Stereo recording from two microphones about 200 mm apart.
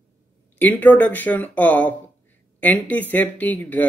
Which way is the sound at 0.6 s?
10° left (ahead or behind).